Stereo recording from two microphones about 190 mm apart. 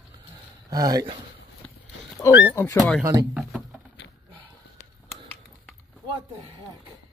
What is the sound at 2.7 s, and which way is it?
Speech, 5° left (ahead or behind).